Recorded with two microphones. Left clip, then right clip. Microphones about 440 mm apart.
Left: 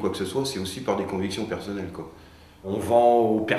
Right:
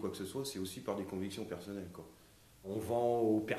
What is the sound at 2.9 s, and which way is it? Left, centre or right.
Speech, right.